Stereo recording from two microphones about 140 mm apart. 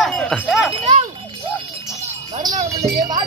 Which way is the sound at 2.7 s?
20° right (ahead or behind).